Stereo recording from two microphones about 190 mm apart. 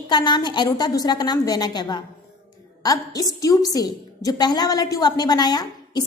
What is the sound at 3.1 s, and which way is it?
A woman's voice, 20° left (ahead or behind).